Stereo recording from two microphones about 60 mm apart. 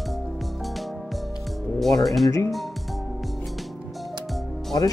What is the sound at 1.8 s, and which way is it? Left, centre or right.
Speech, centre.